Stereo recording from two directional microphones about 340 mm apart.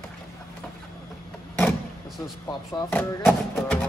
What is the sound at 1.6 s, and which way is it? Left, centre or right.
Vehicle, centre.